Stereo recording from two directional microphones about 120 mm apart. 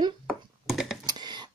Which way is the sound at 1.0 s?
35° right (ahead or behind).